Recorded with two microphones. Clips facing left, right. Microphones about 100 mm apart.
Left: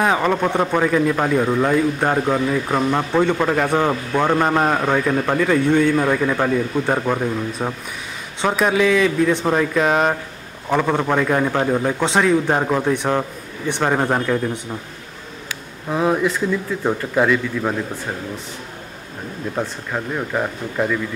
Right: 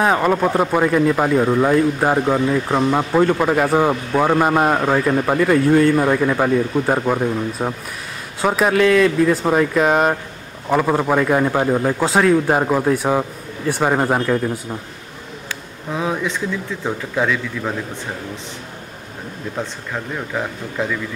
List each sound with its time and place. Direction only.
0.0 s a man's voice: 5° right (ahead or behind)
19.5 s a man's voice: 5° left (ahead or behind)